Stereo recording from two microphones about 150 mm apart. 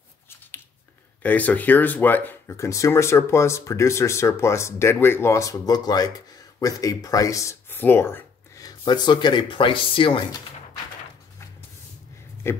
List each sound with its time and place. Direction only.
1.2 s speech: 10° left (ahead or behind); by 10.2 s 35° left (ahead or behind)
12.4 s speech: 15° left (ahead or behind)